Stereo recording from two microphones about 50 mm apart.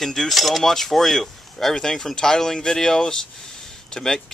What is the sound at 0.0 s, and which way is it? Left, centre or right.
Speech, centre.